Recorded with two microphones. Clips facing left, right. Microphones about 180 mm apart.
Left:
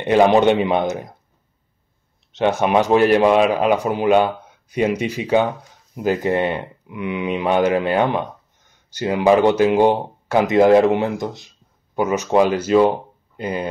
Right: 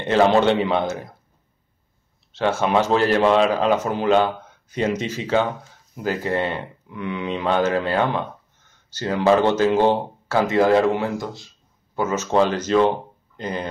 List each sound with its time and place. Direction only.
0.0 s speech: 15° left (ahead or behind)
2.3 s speech: 15° left (ahead or behind)